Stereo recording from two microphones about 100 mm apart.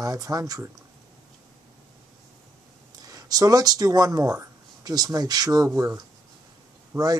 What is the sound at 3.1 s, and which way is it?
Speech, 35° right (ahead or behind).